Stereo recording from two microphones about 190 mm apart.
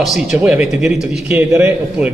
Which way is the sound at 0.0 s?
Centre (ahead or behind).